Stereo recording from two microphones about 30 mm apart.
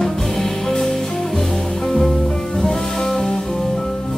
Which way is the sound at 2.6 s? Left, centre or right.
Centre.